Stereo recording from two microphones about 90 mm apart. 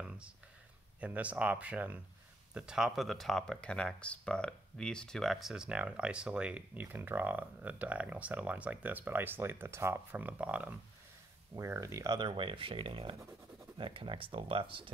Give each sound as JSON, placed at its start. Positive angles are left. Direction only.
{"t": 1.0, "sound": "speech", "side_deg": -15}
{"t": 11.5, "sound": "speech", "side_deg": -35}